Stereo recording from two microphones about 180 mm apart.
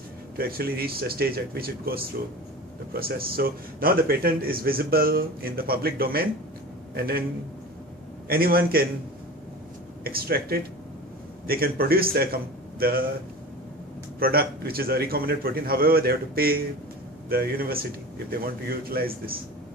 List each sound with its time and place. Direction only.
0.4 s a man's voice: 55° right (ahead or behind)
8.3 s a man's voice: 55° right (ahead or behind)
10.0 s a man's voice: 55° right (ahead or behind)
14.2 s a man's voice: 55° right (ahead or behind)